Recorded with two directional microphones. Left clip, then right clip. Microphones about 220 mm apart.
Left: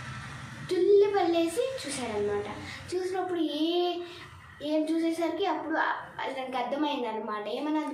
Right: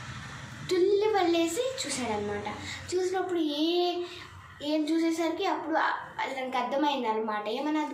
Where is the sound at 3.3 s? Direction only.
10° left (ahead or behind).